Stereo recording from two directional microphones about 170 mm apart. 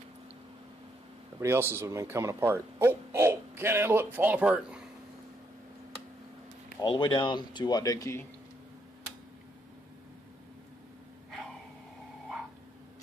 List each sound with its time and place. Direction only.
1.4 s speech: 15° right (ahead or behind)
6.8 s speech: 25° left (ahead or behind)